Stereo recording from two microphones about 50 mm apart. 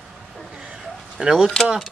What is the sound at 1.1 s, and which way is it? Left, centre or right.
Speech, centre.